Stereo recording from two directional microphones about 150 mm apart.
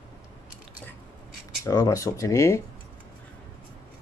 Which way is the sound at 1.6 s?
20° left (ahead or behind).